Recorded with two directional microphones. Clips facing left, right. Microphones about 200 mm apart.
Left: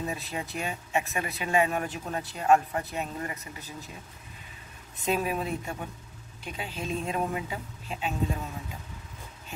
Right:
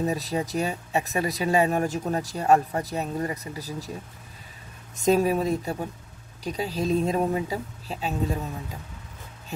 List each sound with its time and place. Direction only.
0.0 s speech: 40° right (ahead or behind)
4.9 s speech: 40° right (ahead or behind)